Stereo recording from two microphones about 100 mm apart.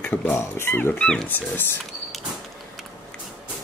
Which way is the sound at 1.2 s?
20° left (ahead or behind).